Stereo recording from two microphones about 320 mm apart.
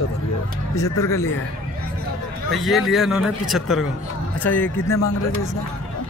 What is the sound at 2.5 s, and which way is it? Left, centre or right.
A man's voice, centre.